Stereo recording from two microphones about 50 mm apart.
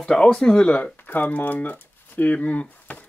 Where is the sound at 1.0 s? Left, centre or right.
Left.